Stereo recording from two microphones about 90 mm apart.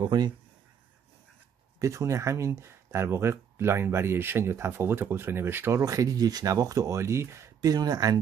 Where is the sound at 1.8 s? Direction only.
35° right (ahead or behind).